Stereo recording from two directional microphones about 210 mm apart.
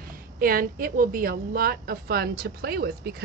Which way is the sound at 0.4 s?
45° right (ahead or behind).